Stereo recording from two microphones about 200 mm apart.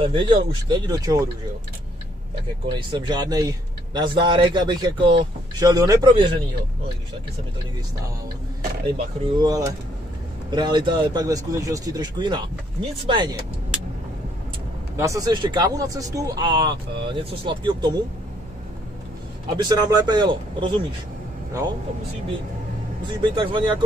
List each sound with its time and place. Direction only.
0.0 s a man's voice: 25° right (ahead or behind)
2.6 s a man's voice: 25° right (ahead or behind)
8.9 s a man's voice: 20° right (ahead or behind)
15.0 s a man's voice: 15° right (ahead or behind)
19.5 s a man's voice: 20° right (ahead or behind)
23.2 s a man's voice: 25° right (ahead or behind)